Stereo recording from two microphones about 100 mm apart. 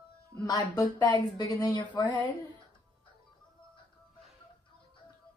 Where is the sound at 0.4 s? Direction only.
40° left (ahead or behind).